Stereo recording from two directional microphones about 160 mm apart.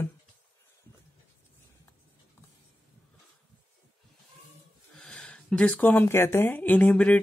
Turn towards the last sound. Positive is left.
turn(degrees=10)  # may be behind; listen again after turning